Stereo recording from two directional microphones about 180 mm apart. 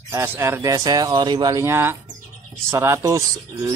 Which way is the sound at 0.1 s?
15° right (ahead or behind).